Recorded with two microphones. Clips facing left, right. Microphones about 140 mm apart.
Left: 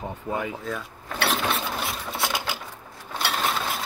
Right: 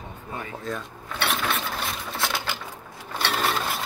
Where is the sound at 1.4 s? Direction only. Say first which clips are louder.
Left 1 dB; 20° left (ahead or behind).